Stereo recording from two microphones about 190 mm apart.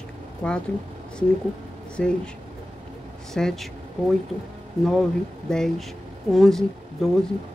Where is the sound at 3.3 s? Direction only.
Centre (ahead or behind).